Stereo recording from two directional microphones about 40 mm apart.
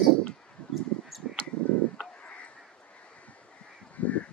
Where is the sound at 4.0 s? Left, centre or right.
Left.